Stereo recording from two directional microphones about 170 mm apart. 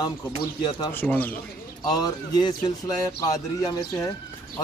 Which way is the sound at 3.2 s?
20° left (ahead or behind).